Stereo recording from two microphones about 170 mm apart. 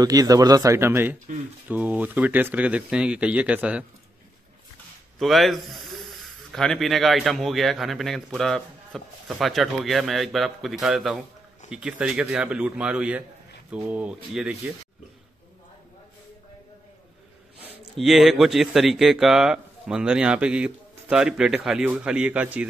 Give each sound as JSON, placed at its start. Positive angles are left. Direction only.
{"t": 0.0, "sound": "speech", "side_deg": -20}
{"t": 5.2, "sound": "speech", "side_deg": 0}
{"t": 17.9, "sound": "speech", "side_deg": 0}